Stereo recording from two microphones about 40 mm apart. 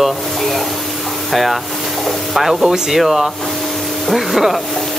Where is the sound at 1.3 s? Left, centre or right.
Centre.